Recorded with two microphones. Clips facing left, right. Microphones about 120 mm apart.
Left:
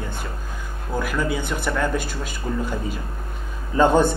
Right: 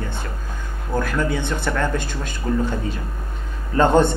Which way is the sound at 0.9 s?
5° left (ahead or behind).